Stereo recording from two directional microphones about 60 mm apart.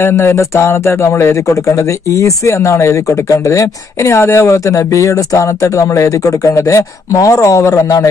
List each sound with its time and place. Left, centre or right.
0.0 s speech: left